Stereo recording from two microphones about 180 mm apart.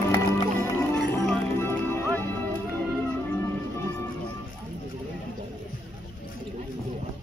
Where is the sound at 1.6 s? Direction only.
15° left (ahead or behind).